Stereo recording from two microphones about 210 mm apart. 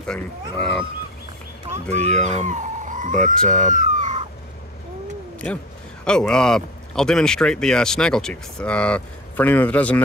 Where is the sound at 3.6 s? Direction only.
35° right (ahead or behind).